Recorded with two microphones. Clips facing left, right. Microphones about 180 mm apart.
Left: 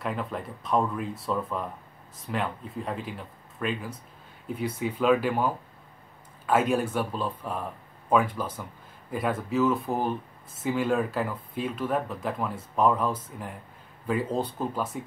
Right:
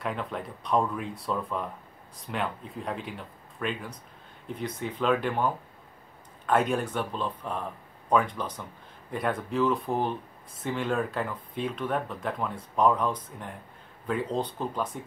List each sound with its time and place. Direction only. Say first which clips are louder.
0.0 s speech: left 1 dB; centre (ahead or behind)